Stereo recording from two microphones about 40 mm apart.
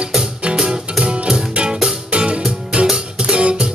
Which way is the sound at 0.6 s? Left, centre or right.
Centre.